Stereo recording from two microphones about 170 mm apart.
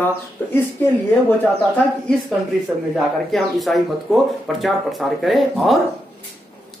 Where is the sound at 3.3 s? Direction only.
Centre (ahead or behind).